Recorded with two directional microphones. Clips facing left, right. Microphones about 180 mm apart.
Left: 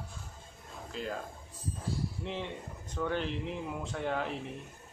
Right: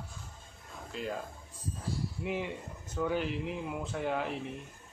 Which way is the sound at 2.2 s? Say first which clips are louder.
Right 3 dB; 10° right (ahead or behind).